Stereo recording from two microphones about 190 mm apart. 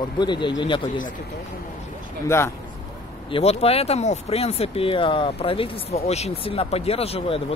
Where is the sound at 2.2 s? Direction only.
15° left (ahead or behind).